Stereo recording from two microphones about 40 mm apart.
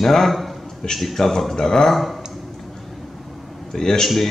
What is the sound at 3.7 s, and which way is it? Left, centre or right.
Speech, centre.